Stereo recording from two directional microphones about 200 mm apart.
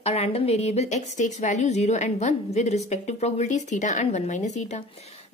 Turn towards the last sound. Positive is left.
turn(degrees=35)  # may be behind; listen again after turning